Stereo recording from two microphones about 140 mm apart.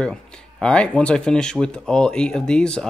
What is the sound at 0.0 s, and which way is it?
Speech, 5° left (ahead or behind).